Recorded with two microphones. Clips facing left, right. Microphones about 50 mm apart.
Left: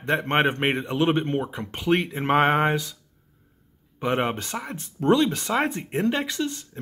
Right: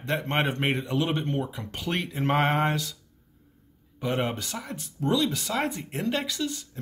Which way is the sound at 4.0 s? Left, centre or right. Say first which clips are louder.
Left 4 dB; left.